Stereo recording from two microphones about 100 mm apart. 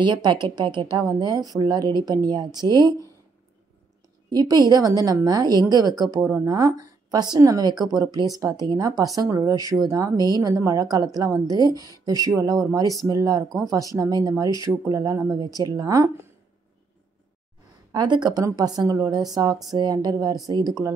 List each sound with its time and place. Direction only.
0.0 s a woman's voice: 50° right (ahead or behind)
4.3 s speech: 40° right (ahead or behind)
15.3 s speech: 40° right (ahead or behind)
17.9 s a woman's voice: 45° right (ahead or behind)